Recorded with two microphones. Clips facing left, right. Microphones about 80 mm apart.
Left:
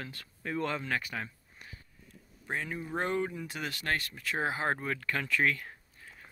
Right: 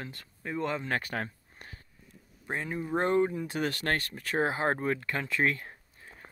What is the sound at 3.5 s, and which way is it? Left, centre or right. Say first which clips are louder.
Speech: right 4 dB; right.